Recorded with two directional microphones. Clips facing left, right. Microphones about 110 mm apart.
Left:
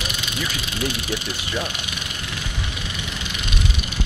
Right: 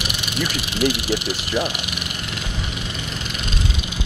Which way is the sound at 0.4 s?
90° right.